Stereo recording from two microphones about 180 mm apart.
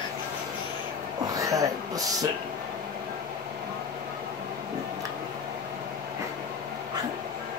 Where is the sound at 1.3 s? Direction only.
20° right (ahead or behind).